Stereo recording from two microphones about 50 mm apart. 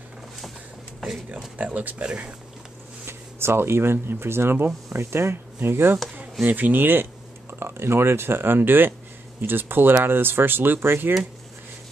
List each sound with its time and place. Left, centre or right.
1.6 s speech: right
3.1 s speech: right
6.4 s speech: right
7.5 s speech: right